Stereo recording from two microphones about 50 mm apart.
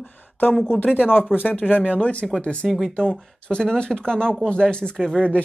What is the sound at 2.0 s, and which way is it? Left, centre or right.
Speech, left.